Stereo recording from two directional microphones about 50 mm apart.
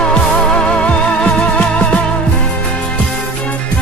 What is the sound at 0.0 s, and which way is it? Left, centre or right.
Music, centre.